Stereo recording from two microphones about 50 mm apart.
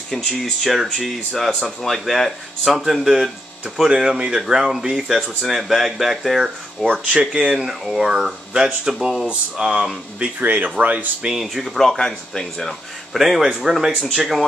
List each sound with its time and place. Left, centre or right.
0.4 s speech: centre
6.9 s speech: right
11.3 s speech: centre
12.0 s speech: centre
13.1 s speech: centre
13.4 s speech: centre